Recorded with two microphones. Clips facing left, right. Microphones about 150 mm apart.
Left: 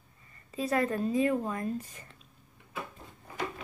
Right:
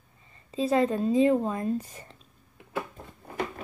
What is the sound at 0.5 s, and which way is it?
Speech, 25° right (ahead or behind).